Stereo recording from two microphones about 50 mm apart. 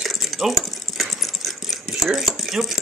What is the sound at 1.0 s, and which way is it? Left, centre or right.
Sewing machine, centre.